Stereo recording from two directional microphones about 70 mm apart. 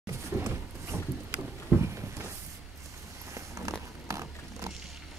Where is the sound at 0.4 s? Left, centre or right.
Right.